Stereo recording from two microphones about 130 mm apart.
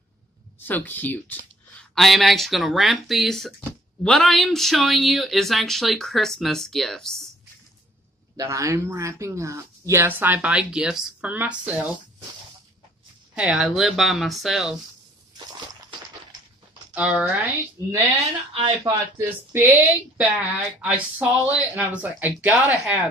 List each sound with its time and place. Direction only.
0.6 s speech: 15° left (ahead or behind)
1.8 s speech: centre (ahead or behind)
8.4 s speech: 25° right (ahead or behind)
13.3 s speech: 5° right (ahead or behind)
16.9 s speech: 10° right (ahead or behind)
17.8 s speech: 25° right (ahead or behind)
18.1 s speech: 50° right (ahead or behind)
19.1 s speech: 15° right (ahead or behind)